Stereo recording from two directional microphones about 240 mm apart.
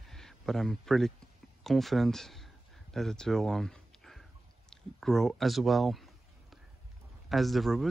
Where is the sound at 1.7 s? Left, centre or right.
Centre.